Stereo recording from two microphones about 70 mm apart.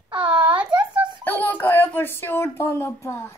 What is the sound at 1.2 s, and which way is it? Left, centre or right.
Speech, left.